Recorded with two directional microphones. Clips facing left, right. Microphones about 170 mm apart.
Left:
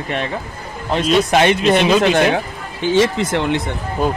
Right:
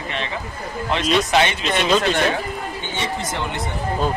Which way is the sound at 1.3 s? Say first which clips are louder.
Left 6 dB; 50° left (ahead or behind).